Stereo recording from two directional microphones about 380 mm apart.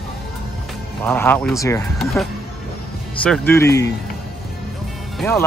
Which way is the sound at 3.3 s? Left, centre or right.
Centre.